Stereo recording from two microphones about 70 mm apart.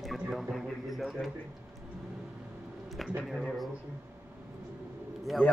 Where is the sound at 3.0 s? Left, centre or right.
Centre.